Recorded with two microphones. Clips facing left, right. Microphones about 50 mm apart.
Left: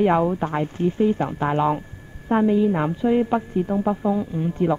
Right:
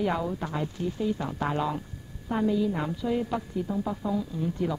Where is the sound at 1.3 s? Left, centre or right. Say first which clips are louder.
Left 8 dB; left.